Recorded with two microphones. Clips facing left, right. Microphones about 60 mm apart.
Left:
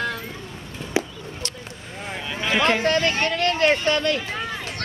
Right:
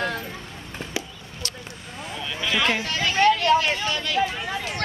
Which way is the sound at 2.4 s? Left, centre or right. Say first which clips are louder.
Left 3 dB; left.